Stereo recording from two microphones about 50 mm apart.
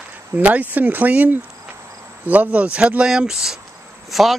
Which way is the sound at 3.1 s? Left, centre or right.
Centre.